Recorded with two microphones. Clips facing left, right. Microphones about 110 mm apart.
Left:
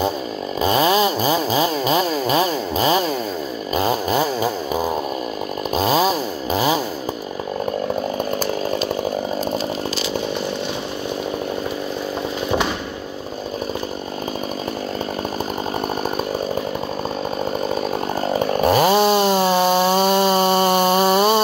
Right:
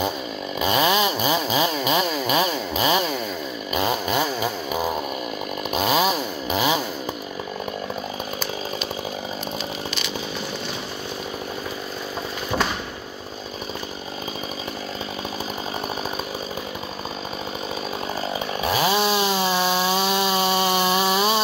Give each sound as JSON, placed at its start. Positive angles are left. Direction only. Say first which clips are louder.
{"t": 0.6, "sound": "chainsaw", "louder": "left 4 dB", "side_deg": 35}
{"t": 5.7, "sound": "chainsaw", "louder": "left 3 dB", "side_deg": 35}
{"t": 18.2, "sound": "chainsaw", "louder": "left 10 dB", "side_deg": 50}